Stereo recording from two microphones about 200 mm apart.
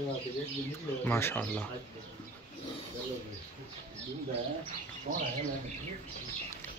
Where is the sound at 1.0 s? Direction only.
10° left (ahead or behind).